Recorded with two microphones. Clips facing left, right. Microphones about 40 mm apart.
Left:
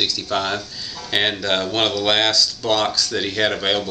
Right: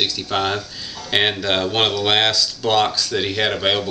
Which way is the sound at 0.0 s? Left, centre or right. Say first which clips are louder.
Right 1 dB; centre.